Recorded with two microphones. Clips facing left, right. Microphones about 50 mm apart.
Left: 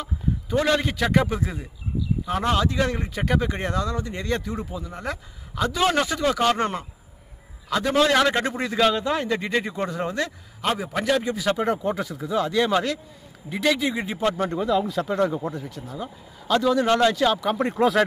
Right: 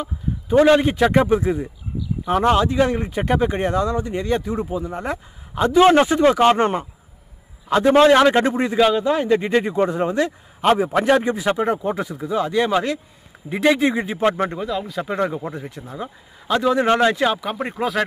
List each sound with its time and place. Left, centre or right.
0.0 s a man's voice: right
4.6 s speech: right
8.7 s speech: centre
10.7 s a man's voice: right
11.4 s speech: centre
13.7 s a man's voice: right
14.6 s speech: centre
15.0 s speech: right
17.4 s speech: centre